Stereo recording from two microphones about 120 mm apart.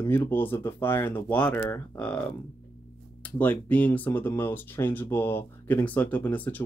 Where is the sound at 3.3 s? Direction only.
10° left (ahead or behind).